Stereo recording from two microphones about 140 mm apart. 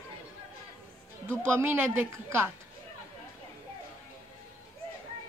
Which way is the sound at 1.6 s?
15° right (ahead or behind).